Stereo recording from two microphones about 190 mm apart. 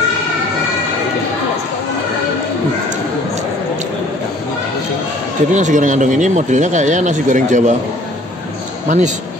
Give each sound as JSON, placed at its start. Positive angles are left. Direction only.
{"t": 5.5, "sound": "speech", "side_deg": -40}
{"t": 8.8, "sound": "speech", "side_deg": -40}